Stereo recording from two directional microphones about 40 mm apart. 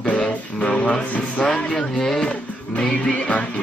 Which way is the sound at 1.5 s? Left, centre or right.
Centre.